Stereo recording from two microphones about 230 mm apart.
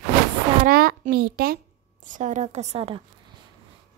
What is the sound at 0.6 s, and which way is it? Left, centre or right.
Speech, right.